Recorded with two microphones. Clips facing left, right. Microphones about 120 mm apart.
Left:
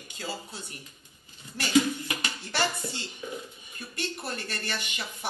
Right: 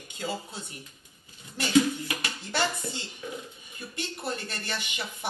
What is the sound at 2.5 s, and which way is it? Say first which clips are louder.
Speech: right 1 dB; 20° right (ahead or behind).